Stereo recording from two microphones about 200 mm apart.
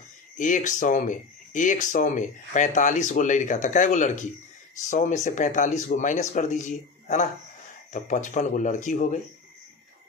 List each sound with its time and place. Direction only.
0.4 s speech: 40° left (ahead or behind)